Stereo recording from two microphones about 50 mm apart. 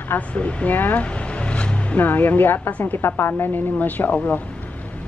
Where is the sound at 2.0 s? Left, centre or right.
Left.